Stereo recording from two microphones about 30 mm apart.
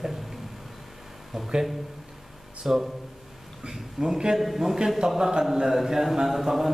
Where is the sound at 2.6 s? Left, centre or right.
Centre.